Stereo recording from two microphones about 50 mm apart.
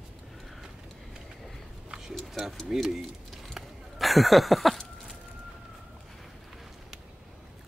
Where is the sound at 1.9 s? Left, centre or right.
Centre.